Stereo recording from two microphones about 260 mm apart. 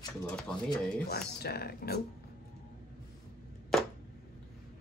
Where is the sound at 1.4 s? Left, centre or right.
Left.